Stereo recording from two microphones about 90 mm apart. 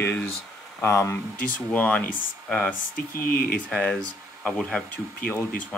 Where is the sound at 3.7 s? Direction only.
10° left (ahead or behind).